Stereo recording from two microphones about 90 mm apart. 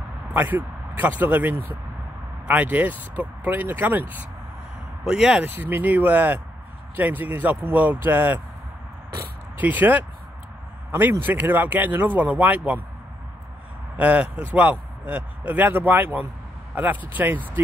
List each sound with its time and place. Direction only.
0.3 s speech: 20° right (ahead or behind)
5.0 s speech: 10° right (ahead or behind)
5.4 s speech: 20° right (ahead or behind)
9.6 s speech: 20° right (ahead or behind)
13.9 s speech: 15° right (ahead or behind)